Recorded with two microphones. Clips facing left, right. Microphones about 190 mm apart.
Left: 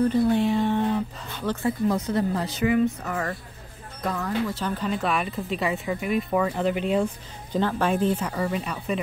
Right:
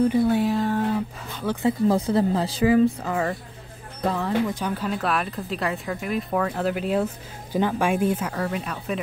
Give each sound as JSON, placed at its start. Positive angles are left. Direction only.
{"t": 0.2, "sound": "a sound", "side_deg": -5}
{"t": 1.4, "sound": "speech", "side_deg": -15}
{"t": 1.9, "sound": "speech", "side_deg": -30}
{"t": 4.6, "sound": "speech", "side_deg": -10}